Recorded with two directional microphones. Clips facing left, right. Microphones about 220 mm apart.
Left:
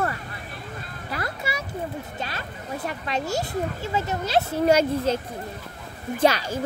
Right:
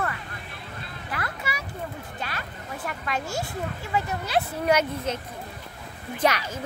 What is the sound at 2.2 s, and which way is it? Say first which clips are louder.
Speech: left 2 dB; 25° left (ahead or behind).